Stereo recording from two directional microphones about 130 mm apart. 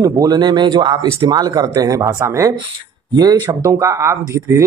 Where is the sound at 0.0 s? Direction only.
30° right (ahead or behind).